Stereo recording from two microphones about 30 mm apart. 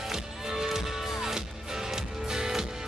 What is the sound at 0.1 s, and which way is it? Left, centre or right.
Music, centre.